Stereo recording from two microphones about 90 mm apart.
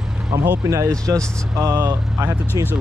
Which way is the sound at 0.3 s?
40° right (ahead or behind).